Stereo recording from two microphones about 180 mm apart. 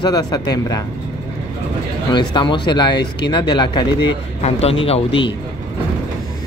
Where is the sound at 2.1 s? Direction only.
25° left (ahead or behind).